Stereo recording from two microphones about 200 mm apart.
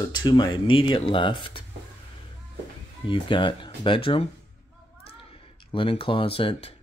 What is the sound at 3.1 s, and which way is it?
Speech, 25° left (ahead or behind).